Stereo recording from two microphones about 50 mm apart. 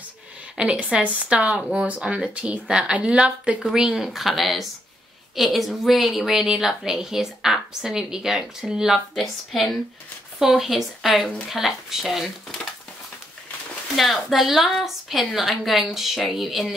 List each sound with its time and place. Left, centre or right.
0.7 s a woman's voice: right
3.6 s a woman's voice: centre
9.1 s a woman's voice: centre
13.9 s a woman's voice: centre